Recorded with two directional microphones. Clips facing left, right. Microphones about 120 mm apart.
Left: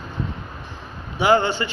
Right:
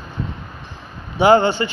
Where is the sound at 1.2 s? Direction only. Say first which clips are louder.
Right 5 dB; 30° right (ahead or behind).